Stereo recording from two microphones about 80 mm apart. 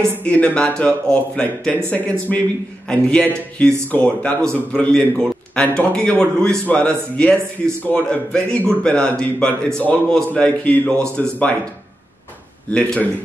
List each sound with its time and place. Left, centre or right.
0.2 s a man's voice: centre
12.7 s a man's voice: centre